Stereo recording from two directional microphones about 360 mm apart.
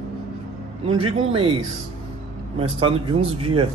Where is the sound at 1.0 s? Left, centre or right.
Centre.